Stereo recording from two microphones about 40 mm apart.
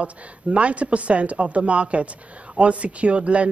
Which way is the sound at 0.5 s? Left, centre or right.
Right.